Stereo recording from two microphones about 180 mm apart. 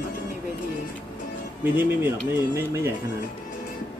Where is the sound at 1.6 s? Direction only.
10° right (ahead or behind).